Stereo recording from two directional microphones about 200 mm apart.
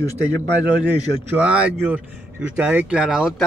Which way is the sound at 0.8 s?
5° right (ahead or behind).